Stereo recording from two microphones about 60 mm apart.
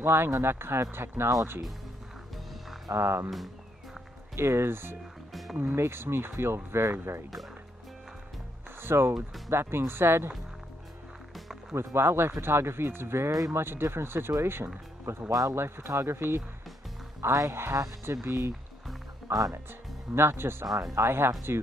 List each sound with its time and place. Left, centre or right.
0.0 s speech: right
2.9 s speech: right
4.4 s speech: right
5.3 s music: centre
5.8 s speech: right
8.8 s speech: right
11.7 s speech: right
13.3 s speech: right
13.6 s speech: right
18.2 s speech: right
19.3 s speech: right